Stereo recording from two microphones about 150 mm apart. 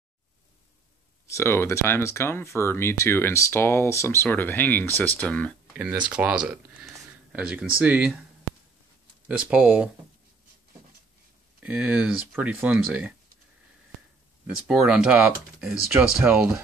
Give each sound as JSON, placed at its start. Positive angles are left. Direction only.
{"t": 1.2, "sound": "speech", "side_deg": 20}
{"t": 6.0, "sound": "speech", "side_deg": -5}
{"t": 9.3, "sound": "speech", "side_deg": -5}
{"t": 11.6, "sound": "speech", "side_deg": -5}
{"t": 14.7, "sound": "speech", "side_deg": -5}